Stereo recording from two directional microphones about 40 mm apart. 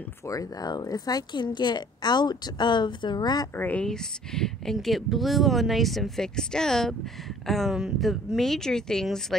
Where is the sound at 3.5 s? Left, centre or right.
Left.